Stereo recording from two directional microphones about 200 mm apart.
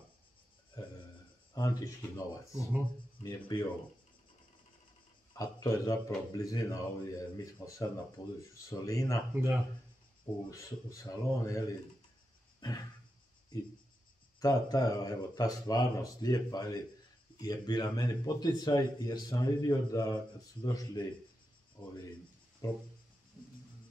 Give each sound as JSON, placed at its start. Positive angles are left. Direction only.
{"t": 1.5, "sound": "a man's voice", "side_deg": 20}
{"t": 5.3, "sound": "a man's voice", "side_deg": 15}
{"t": 9.3, "sound": "speech", "side_deg": -10}
{"t": 10.5, "sound": "speech", "side_deg": 15}
{"t": 12.5, "sound": "a sound", "side_deg": 20}
{"t": 14.4, "sound": "a man's voice", "side_deg": 20}